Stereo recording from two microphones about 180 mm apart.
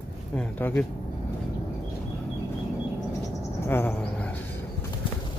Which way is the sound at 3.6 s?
10° left (ahead or behind).